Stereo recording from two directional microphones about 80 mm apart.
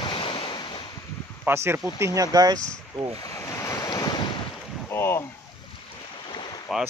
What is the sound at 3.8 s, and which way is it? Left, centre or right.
Waves, left.